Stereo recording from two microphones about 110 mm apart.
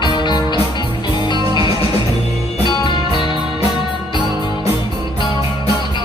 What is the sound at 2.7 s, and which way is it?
Music, 40° left (ahead or behind).